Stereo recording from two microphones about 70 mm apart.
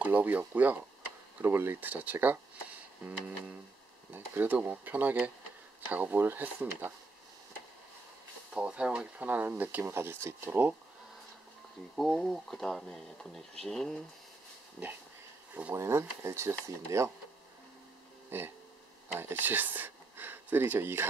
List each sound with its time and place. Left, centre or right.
0.0 s speech: right
8.5 s speech: centre
9.8 s speech: right
11.9 s speech: centre
15.7 s speech: right
18.3 s speech: right